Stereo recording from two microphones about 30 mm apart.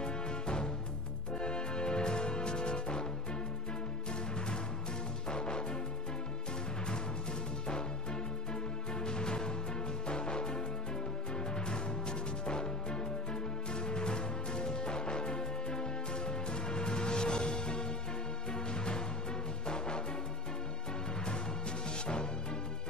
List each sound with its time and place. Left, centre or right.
0.0 s music: left
5.3 s music: left
8.9 s music: left
21.9 s music: left